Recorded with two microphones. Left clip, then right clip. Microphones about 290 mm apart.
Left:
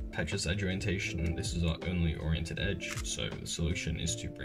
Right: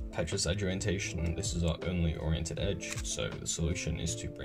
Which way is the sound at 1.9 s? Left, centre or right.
Centre.